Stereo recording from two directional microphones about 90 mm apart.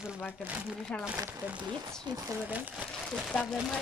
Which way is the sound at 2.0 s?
45° right (ahead or behind).